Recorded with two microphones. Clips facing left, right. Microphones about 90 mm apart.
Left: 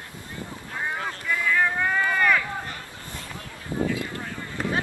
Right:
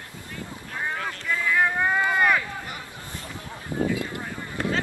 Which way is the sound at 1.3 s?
15° right (ahead or behind).